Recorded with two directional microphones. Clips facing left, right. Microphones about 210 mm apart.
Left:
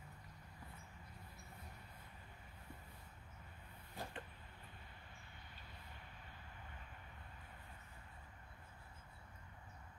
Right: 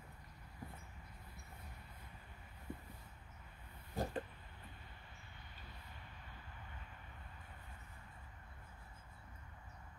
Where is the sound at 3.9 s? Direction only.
40° right (ahead or behind).